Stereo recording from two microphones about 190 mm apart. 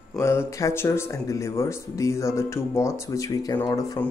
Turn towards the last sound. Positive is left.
turn(degrees=20)  # may be behind; listen again after turning